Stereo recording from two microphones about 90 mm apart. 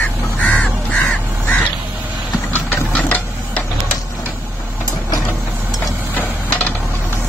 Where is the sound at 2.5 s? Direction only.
20° left (ahead or behind).